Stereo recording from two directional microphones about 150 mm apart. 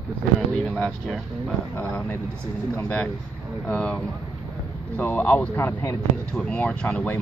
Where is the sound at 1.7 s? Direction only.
10° left (ahead or behind).